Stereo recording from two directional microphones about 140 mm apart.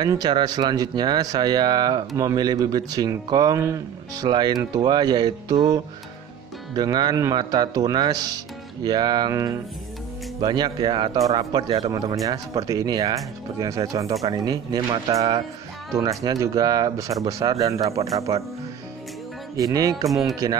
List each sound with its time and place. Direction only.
0.0 s speech: 30° right (ahead or behind)
19.5 s speech: 25° right (ahead or behind)
20.1 s speech: centre (ahead or behind)